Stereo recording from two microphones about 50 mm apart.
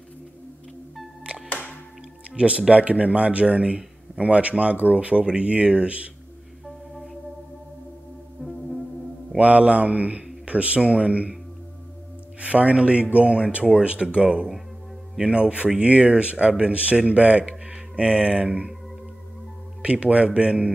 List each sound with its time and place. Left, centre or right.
1.5 s music: left
2.3 s a man's voice: right
8.4 s music: centre
9.4 s a man's voice: right
12.4 s a man's voice: right
19.8 s a man's voice: right